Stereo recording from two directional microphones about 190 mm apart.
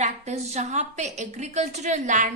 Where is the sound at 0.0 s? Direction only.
35° right (ahead or behind).